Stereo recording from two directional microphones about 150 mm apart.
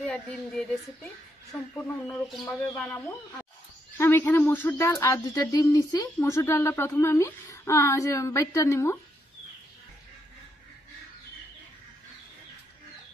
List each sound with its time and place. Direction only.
0.0 s speech: 5° left (ahead or behind)
4.0 s speech: 15° left (ahead or behind)